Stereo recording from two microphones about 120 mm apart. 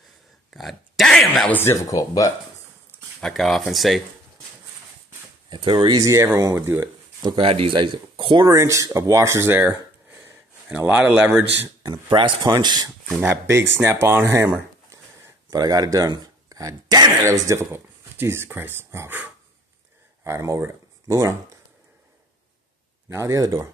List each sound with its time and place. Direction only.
0.5 s a sound: centre (ahead or behind)
1.6 s speech: 25° left (ahead or behind)
3.2 s speech: 5° left (ahead or behind)
5.5 s speech: 40° right (ahead or behind); by 6.9 s 20° right (ahead or behind)
7.2 s speech: 50° right (ahead or behind)
8.5 s speech: 25° right (ahead or behind)
11.0 s speech: 10° right (ahead or behind)
11.8 s speech: 40° right (ahead or behind)
13.1 s speech: 20° right (ahead or behind)
14.9 s a sound: 20° right (ahead or behind)
15.5 s speech: 35° right (ahead or behind); by 19.3 s 15° right (ahead or behind)
20.2 s speech: 25° right (ahead or behind)
23.0 s speech: 25° right (ahead or behind)